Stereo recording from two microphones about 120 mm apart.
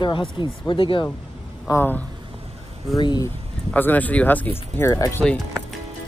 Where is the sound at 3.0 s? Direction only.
40° left (ahead or behind).